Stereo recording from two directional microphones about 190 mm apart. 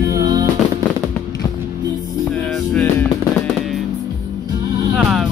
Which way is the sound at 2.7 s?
5° left (ahead or behind).